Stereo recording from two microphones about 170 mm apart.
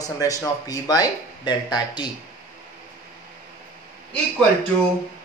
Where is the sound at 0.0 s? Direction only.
20° left (ahead or behind).